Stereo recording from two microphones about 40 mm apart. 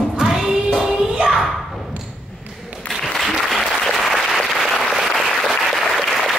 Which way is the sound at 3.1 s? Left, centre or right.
Centre.